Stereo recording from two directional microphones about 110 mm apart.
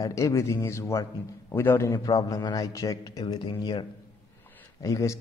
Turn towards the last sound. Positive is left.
turn(degrees=30)  # may be behind; listen again after turning